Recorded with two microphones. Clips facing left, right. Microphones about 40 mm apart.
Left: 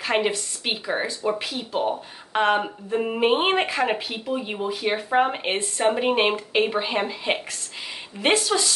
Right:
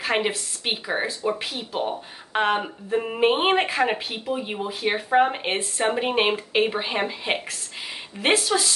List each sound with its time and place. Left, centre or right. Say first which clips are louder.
0.0 s a woman's voice: left 1 dB; centre
8.5 s speech: even; centre